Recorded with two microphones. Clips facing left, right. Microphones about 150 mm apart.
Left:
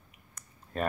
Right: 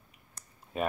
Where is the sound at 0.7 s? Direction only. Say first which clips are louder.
Even; 5° right (ahead or behind).